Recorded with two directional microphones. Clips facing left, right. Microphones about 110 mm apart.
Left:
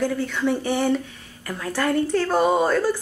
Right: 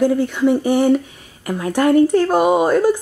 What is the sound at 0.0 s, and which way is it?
Speech, 15° right (ahead or behind).